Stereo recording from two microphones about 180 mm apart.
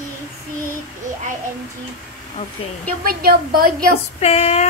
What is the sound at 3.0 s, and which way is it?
Speech, 55° right (ahead or behind).